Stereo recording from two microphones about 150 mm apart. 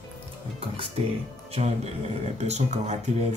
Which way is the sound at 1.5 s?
45° right (ahead or behind).